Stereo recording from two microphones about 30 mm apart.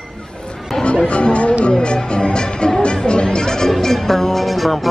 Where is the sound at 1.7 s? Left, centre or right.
Left.